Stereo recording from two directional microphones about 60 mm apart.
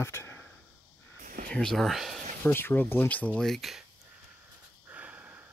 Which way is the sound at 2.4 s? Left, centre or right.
Left.